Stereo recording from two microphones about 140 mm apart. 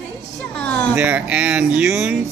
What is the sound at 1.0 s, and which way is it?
A man's voice, 10° right (ahead or behind).